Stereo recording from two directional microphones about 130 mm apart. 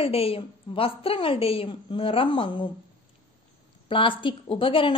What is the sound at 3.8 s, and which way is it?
A woman's voice, 40° left (ahead or behind).